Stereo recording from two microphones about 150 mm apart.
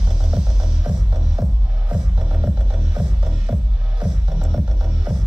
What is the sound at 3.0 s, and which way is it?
Music, 30° right (ahead or behind).